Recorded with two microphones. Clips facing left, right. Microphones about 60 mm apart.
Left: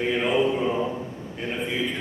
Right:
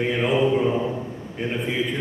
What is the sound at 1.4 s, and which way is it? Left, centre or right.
Speech, right.